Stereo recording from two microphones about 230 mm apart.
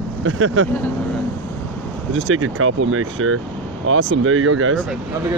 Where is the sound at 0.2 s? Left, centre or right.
Right.